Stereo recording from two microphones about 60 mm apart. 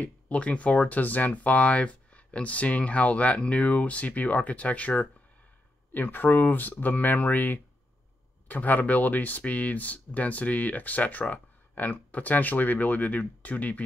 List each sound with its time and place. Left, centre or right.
0.0 s speech: left